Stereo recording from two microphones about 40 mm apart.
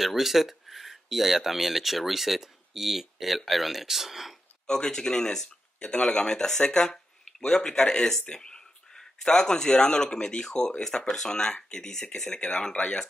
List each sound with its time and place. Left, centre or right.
0.0 s speech: centre
4.6 s speech: centre